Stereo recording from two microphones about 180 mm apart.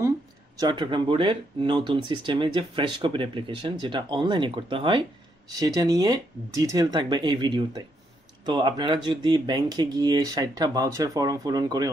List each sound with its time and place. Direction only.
0.6 s speech: 25° right (ahead or behind)